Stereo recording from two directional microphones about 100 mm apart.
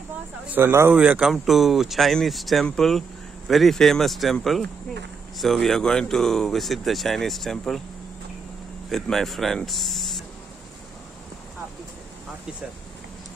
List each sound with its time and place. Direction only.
0.5 s speech: 25° right (ahead or behind)
0.9 s speech: 15° right (ahead or behind)
1.3 s speech: centre (ahead or behind)
8.8 s speech: 5° left (ahead or behind)